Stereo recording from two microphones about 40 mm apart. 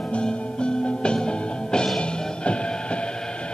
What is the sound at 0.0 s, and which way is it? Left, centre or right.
Music, left.